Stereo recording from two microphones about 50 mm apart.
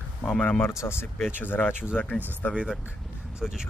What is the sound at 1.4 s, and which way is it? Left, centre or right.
Speech, left.